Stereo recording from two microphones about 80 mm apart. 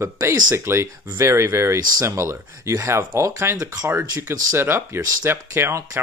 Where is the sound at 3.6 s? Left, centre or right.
Right.